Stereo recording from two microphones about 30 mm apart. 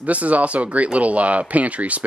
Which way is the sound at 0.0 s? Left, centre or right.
Right.